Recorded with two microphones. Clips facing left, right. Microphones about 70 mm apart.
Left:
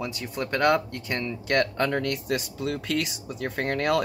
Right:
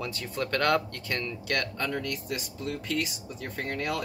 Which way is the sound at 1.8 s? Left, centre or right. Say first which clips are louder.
Left 6 dB; left.